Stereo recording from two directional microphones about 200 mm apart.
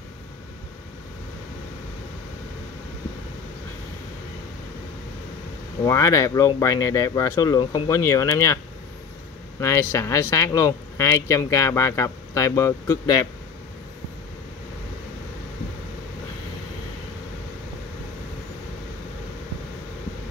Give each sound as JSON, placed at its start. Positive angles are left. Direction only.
{"t": 5.9, "sound": "speech", "side_deg": 15}
{"t": 9.6, "sound": "speech", "side_deg": 15}